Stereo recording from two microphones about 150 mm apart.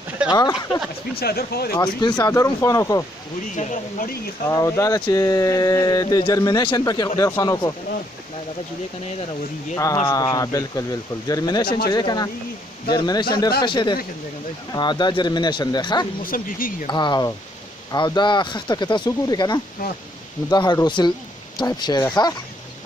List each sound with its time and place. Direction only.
0.3 s speech: 25° left (ahead or behind)
1.1 s speech: 90° left
1.8 s speech: 30° left (ahead or behind)
3.5 s speech: 65° left (ahead or behind)
4.5 s speech: 20° left (ahead or behind)
10.0 s speech: 25° left (ahead or behind)
16.2 s speech: 65° left (ahead or behind)
16.8 s speech: 30° left (ahead or behind)